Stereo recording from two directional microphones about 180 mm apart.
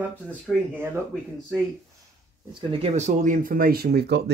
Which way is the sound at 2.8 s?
40° right (ahead or behind).